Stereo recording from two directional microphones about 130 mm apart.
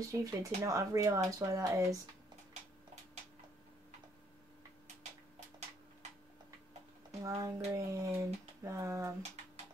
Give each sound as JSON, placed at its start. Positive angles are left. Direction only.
{"t": 0.1, "sound": "speech", "side_deg": -25}
{"t": 7.2, "sound": "speech", "side_deg": -25}